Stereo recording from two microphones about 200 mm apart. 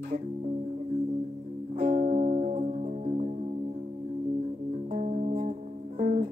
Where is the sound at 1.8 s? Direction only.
40° right (ahead or behind).